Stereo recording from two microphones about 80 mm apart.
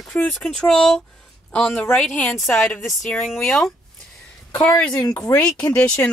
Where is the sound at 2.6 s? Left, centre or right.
Centre.